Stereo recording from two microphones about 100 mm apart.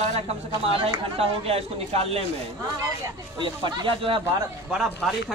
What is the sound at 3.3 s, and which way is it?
Speech, 50° right (ahead or behind).